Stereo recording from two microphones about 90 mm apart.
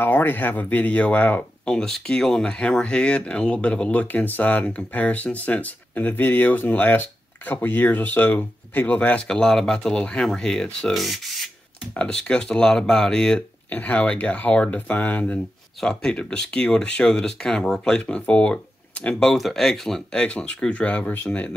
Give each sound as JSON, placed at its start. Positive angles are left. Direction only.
{"t": 0.0, "sound": "speech", "side_deg": 25}
{"t": 15.8, "sound": "speech", "side_deg": 5}